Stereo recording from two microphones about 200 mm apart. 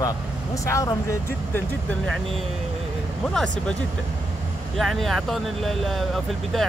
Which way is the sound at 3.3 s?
5° left (ahead or behind).